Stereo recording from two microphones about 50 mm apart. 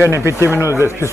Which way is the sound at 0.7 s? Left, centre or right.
Right.